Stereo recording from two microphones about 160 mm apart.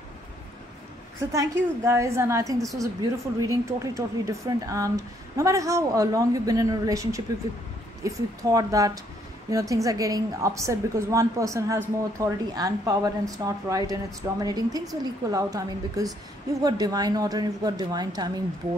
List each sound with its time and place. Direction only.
1.3 s speech: 20° right (ahead or behind)